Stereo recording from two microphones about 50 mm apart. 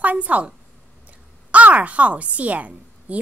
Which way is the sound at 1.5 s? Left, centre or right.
Right.